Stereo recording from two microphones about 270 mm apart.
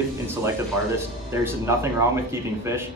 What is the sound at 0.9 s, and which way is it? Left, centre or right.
Speech, centre.